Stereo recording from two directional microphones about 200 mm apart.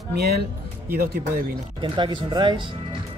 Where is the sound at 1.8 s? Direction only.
25° right (ahead or behind).